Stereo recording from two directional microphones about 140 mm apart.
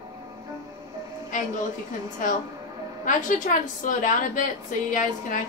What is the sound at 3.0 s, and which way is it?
A woman's voice, 65° left (ahead or behind).